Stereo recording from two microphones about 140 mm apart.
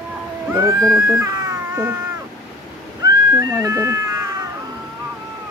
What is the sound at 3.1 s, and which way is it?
Cat, 25° right (ahead or behind).